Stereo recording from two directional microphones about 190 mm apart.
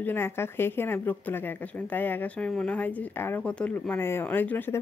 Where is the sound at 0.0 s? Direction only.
10° left (ahead or behind).